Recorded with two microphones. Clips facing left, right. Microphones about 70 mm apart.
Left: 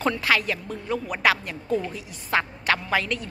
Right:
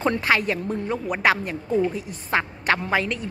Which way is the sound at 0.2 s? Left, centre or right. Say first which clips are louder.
Right 2 dB; right.